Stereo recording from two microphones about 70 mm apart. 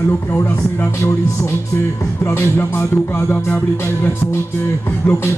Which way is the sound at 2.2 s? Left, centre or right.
Left.